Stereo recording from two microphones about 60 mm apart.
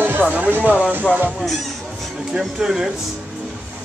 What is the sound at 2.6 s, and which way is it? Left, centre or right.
Music, centre.